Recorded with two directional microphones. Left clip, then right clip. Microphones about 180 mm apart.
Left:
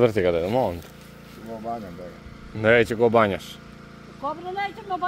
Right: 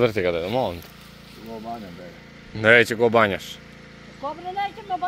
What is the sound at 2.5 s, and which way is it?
Speech, centre (ahead or behind).